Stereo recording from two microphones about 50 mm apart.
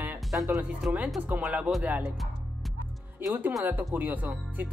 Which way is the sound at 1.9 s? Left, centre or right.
Right.